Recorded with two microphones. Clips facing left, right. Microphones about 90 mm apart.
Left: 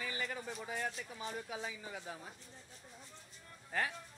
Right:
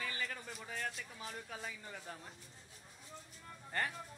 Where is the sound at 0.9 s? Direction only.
Centre (ahead or behind).